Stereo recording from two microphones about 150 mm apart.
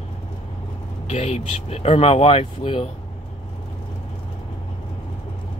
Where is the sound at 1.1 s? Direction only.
45° left (ahead or behind).